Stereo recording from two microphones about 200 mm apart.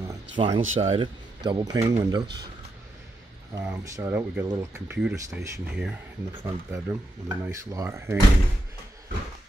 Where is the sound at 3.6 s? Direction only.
15° right (ahead or behind).